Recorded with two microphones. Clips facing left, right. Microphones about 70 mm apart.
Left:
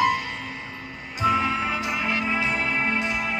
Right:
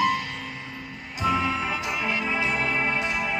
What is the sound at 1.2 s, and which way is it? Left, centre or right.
Music, left.